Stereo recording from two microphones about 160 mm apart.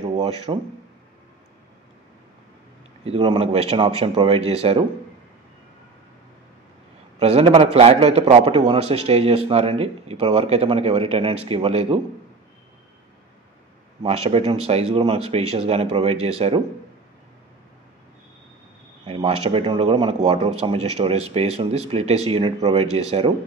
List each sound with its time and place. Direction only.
0.1 s speech: 40° right (ahead or behind)
3.0 s a man's voice: 40° right (ahead or behind)
7.2 s a man's voice: 40° right (ahead or behind)
14.0 s a man's voice: 40° right (ahead or behind)
19.0 s a man's voice: 35° right (ahead or behind)